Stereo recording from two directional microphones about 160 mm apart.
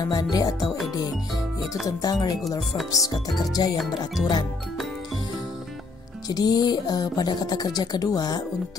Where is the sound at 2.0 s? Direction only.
25° left (ahead or behind).